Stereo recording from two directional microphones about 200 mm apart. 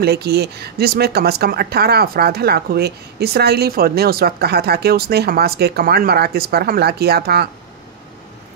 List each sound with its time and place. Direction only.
0.0 s speech: 55° right (ahead or behind)